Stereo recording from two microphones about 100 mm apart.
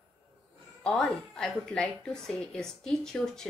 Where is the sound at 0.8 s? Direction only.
10° left (ahead or behind).